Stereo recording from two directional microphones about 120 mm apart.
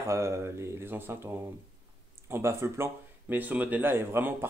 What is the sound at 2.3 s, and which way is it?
Speech, 20° right (ahead or behind).